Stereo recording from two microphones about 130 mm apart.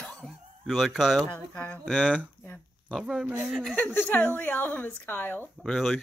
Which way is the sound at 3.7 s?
15° left (ahead or behind).